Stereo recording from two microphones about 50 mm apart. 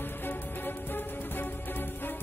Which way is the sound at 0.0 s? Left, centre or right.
Left.